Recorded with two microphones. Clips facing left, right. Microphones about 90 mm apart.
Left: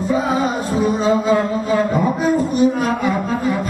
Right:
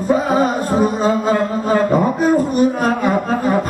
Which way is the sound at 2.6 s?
45° right (ahead or behind).